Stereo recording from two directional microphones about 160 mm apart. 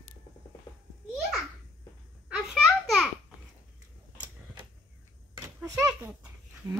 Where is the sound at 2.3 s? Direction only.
Centre (ahead or behind).